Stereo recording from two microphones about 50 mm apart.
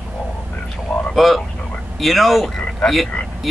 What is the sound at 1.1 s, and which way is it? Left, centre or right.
Speech, centre.